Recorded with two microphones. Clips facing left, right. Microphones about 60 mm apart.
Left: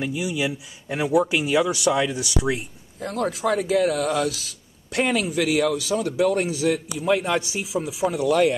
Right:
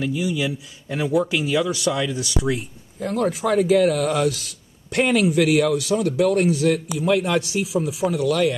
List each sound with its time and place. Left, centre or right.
0.0 s speech: centre
2.5 s speech: centre
8.3 s speech: left